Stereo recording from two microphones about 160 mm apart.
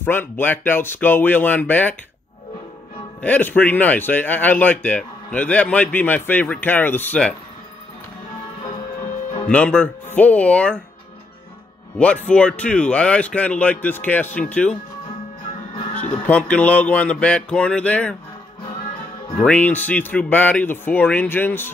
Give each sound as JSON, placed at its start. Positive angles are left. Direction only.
{"t": 0.0, "sound": "speech", "side_deg": 15}
{"t": 3.2, "sound": "speech", "side_deg": 10}
{"t": 9.5, "sound": "speech", "side_deg": 10}
{"t": 12.3, "sound": "speech", "side_deg": 5}
{"t": 16.0, "sound": "speech", "side_deg": 10}
{"t": 19.3, "sound": "speech", "side_deg": 5}